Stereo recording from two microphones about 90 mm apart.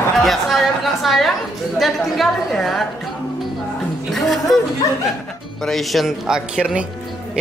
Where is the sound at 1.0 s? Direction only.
Centre (ahead or behind).